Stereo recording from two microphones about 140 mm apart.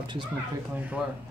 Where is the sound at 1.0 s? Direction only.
5° right (ahead or behind).